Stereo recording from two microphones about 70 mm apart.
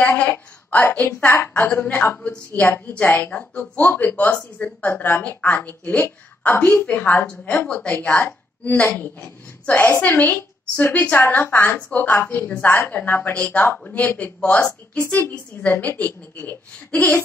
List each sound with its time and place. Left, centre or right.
0.2 s a woman's voice: left